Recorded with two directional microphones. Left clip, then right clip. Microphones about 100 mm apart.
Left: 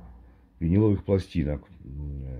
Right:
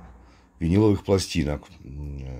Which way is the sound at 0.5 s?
20° right (ahead or behind).